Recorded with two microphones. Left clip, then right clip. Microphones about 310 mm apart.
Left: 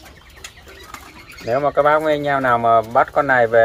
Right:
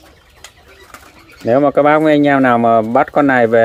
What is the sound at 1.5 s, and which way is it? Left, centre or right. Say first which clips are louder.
Speech: right 5 dB; right.